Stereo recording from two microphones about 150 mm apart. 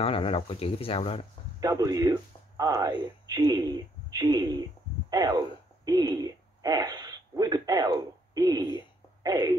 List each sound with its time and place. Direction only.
0.0 s speech: 35° left (ahead or behind)
1.6 s speech: 25° right (ahead or behind)